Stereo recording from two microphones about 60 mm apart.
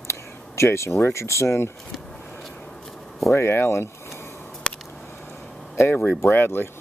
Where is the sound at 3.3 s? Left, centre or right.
Left.